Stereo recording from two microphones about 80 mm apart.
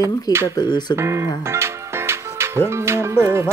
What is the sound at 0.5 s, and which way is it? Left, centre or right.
Speech, left.